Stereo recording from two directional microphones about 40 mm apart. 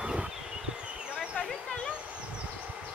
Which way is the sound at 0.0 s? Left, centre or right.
Right.